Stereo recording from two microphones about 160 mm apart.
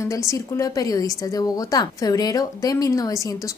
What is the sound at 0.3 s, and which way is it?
A woman's voice, 20° left (ahead or behind).